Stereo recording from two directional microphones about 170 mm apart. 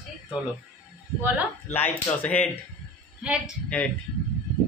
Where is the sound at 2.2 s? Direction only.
5° left (ahead or behind).